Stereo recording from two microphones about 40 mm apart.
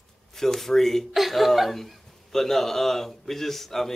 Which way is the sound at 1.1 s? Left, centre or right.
Centre.